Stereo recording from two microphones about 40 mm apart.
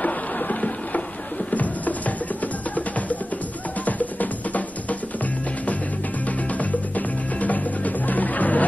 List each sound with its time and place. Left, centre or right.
0.0 s a sound: left
1.5 s music: left
6.2 s music: left